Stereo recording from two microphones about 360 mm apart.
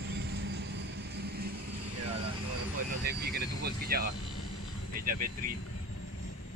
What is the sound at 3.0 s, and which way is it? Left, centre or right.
Vehicle, right.